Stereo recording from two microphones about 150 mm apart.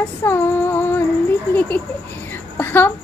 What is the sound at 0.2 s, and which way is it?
Female singing, 15° left (ahead or behind).